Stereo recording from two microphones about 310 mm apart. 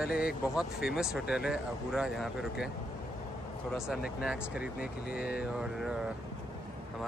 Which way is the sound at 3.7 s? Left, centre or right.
Centre.